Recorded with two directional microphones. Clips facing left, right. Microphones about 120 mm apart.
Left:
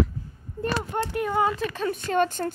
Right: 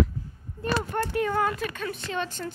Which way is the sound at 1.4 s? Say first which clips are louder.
Left 3 dB; 30° left (ahead or behind).